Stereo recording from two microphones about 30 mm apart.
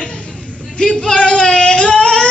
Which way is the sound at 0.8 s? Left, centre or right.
Left.